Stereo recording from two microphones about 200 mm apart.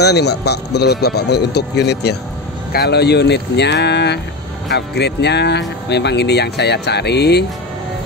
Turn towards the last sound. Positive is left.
turn(degrees=55)  # may be behind; listen again after turning